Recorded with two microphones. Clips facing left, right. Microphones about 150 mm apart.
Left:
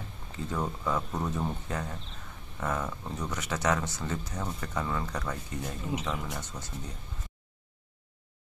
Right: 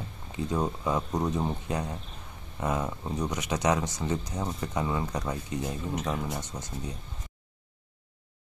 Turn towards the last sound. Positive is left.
turn(degrees=-15)  # may be behind; listen again after turning